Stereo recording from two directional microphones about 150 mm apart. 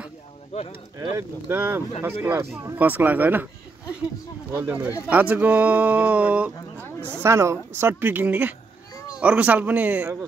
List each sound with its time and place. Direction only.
0.9 s speech: 15° right (ahead or behind)
4.5 s speech: 15° right (ahead or behind)